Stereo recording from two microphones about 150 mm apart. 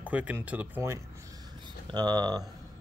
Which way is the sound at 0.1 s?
10° right (ahead or behind).